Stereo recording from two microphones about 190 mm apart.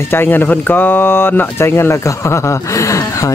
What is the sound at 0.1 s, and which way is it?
Speech, 10° left (ahead or behind).